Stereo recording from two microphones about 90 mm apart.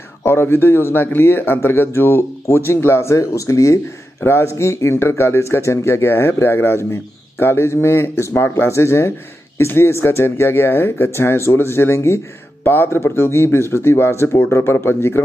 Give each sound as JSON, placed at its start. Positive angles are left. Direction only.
{"t": 0.2, "sound": "a man's voice", "side_deg": 25}